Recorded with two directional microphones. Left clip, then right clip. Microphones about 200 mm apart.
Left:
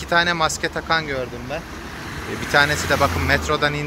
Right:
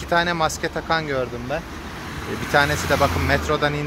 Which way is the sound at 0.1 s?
10° right (ahead or behind).